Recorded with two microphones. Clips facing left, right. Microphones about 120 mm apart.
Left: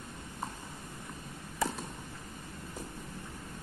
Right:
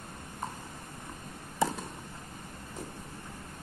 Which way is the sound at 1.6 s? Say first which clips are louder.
Right 4 dB; 25° right (ahead or behind).